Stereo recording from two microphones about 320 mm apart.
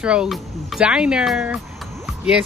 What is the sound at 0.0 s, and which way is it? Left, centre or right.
Speech, centre.